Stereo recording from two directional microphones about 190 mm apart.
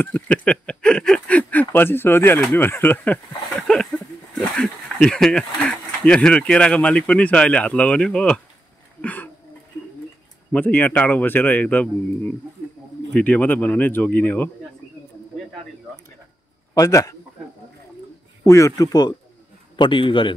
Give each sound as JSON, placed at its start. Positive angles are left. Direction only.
{"t": 0.0, "sound": "speech", "side_deg": 5}
{"t": 9.0, "sound": "a sound", "side_deg": 10}
{"t": 10.5, "sound": "a man's voice", "side_deg": 10}
{"t": 16.7, "sound": "a man's voice", "side_deg": 20}
{"t": 18.4, "sound": "a man's voice", "side_deg": 15}